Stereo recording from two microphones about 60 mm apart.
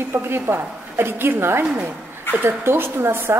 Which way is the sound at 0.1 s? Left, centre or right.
Right.